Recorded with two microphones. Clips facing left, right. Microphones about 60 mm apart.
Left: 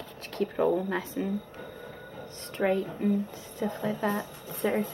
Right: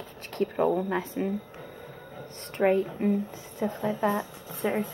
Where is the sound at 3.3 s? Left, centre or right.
Centre.